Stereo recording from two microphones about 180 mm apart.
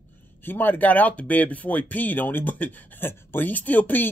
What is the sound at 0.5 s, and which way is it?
Speech, 10° left (ahead or behind).